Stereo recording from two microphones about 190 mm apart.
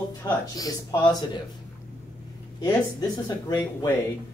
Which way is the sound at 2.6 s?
20° left (ahead or behind).